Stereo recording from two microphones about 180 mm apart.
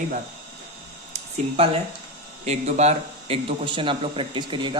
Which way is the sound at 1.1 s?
35° right (ahead or behind).